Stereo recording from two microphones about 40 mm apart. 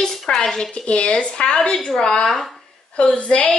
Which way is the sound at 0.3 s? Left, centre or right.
Centre.